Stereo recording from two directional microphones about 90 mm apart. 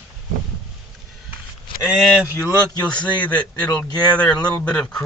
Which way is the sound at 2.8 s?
10° left (ahead or behind).